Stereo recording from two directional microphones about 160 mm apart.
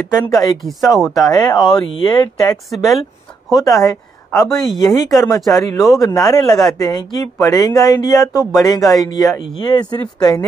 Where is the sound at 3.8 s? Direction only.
25° left (ahead or behind).